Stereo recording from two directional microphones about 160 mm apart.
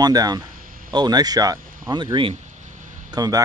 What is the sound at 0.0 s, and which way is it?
Speech, 25° right (ahead or behind).